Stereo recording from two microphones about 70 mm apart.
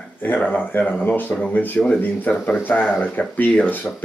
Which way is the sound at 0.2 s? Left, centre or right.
Left.